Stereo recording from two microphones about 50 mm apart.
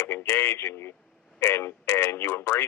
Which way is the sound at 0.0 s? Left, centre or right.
Left.